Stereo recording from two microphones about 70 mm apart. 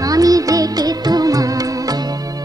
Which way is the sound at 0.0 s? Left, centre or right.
Right.